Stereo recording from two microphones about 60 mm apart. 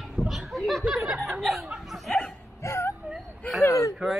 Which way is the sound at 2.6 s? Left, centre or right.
Left.